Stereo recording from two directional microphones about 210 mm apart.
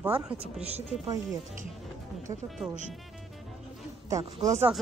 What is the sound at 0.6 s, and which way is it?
Speech, 30° right (ahead or behind).